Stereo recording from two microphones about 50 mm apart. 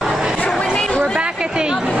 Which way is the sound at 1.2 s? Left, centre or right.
Centre.